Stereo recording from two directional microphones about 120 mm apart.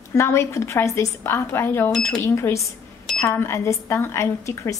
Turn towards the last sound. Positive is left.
turn(degrees=25)  # may be behind; listen again after turning